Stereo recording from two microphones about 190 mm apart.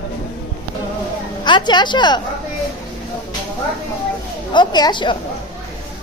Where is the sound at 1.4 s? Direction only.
25° left (ahead or behind).